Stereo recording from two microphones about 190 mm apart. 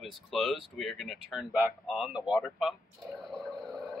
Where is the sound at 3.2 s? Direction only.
Centre (ahead or behind).